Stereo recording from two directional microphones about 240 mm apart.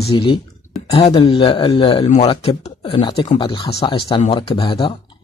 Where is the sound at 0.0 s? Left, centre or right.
Left.